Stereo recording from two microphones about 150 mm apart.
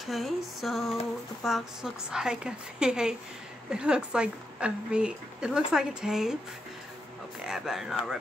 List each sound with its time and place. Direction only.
0.0 s a woman's voice: centre (ahead or behind)
7.4 s a woman's voice: 5° right (ahead or behind)